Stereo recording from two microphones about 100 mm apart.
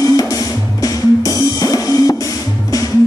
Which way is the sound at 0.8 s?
40° left (ahead or behind).